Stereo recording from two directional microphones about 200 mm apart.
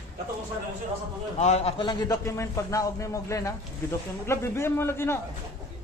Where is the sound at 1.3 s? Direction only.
35° left (ahead or behind); by 5.1 s 10° left (ahead or behind).